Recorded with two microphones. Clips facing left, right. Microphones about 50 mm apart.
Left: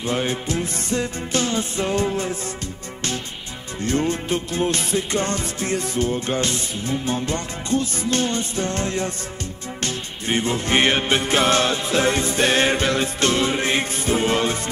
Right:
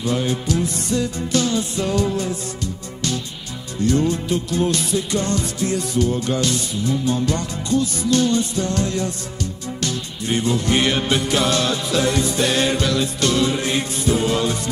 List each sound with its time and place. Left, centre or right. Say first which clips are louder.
0.0 s music: right 2 dB; left
3.8 s music: right 3 dB; left